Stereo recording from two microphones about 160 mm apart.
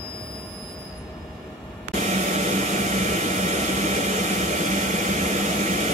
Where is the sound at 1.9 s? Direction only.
50° right (ahead or behind).